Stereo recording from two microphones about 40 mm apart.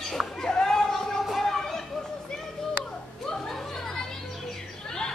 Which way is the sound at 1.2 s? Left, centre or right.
Centre.